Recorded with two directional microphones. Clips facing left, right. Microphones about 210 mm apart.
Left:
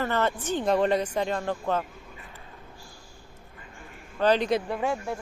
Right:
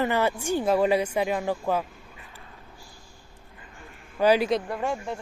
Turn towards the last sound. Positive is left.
turn(degrees=5)  # may be behind; listen again after turning